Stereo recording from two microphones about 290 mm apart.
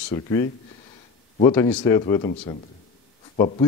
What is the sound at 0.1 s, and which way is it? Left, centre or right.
Speech, centre.